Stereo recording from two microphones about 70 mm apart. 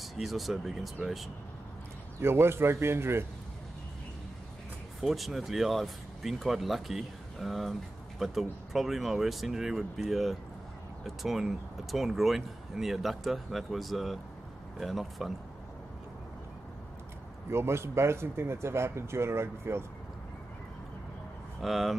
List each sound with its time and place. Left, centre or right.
0.0 s speech: centre
2.1 s speech: right
5.0 s speech: centre
17.5 s speech: right
21.5 s speech: centre